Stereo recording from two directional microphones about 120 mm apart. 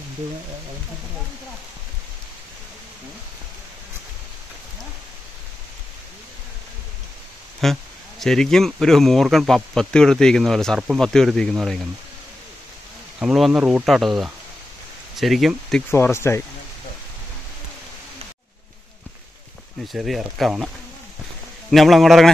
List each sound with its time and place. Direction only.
7.6 s speech: centre (ahead or behind)
13.2 s speech: 5° right (ahead or behind)
15.9 s speech: 20° left (ahead or behind)
19.9 s speech: centre (ahead or behind)